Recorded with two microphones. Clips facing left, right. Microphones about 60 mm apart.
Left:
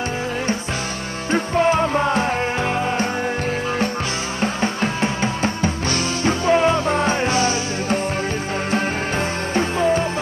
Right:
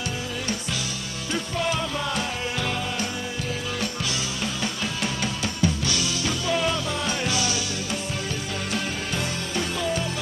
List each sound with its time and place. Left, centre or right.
1.3 s music: left
4.4 s music: left
9.6 s music: left